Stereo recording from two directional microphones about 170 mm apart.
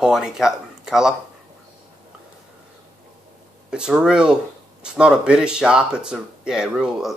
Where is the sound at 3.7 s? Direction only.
5° right (ahead or behind).